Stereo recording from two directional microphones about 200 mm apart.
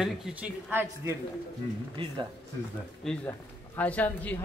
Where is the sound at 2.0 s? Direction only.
25° right (ahead or behind).